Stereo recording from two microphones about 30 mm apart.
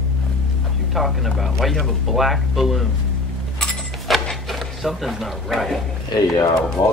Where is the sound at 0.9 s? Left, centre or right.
Centre.